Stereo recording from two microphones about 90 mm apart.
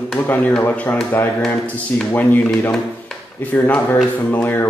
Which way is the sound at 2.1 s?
20° left (ahead or behind).